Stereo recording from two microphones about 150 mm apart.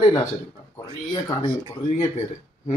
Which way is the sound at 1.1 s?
30° left (ahead or behind).